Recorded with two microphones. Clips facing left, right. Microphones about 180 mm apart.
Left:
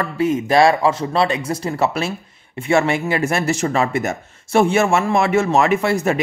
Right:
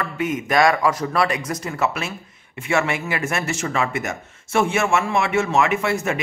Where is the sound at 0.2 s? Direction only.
30° left (ahead or behind).